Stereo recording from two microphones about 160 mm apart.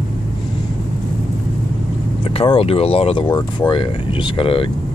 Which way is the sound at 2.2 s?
35° left (ahead or behind).